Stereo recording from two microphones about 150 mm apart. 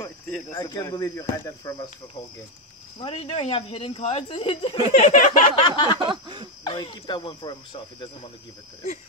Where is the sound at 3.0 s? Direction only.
45° left (ahead or behind).